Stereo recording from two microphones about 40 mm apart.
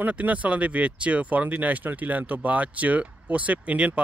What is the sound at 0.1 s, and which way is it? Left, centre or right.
Speech, right.